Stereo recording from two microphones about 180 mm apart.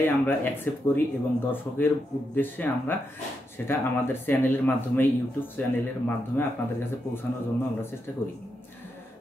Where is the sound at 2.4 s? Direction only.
10° left (ahead or behind).